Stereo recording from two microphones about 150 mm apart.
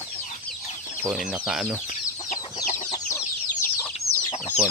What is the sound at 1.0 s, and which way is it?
Speech, 5° right (ahead or behind).